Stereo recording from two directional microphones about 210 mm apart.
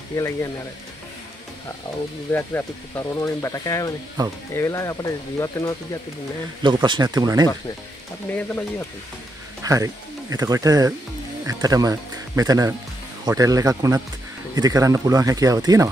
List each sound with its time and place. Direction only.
0.1 s speech: 15° left (ahead or behind)
2.3 s speech: 10° left (ahead or behind)
6.6 s speech: 20° right (ahead or behind)
8.4 s speech: 5° left (ahead or behind)
9.6 s speech: 15° right (ahead or behind)